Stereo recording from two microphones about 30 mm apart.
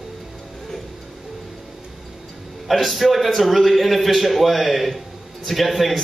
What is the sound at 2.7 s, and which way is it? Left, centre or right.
A man's voice, centre.